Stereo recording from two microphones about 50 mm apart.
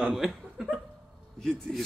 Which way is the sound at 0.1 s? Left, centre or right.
Centre.